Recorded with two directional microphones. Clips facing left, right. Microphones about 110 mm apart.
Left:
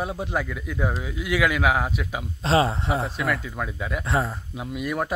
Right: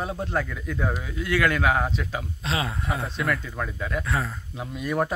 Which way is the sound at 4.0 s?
25° left (ahead or behind).